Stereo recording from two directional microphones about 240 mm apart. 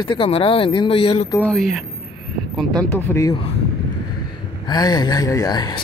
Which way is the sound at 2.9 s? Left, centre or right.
Centre.